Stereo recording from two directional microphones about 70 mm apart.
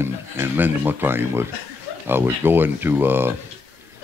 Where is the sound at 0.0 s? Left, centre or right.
Right.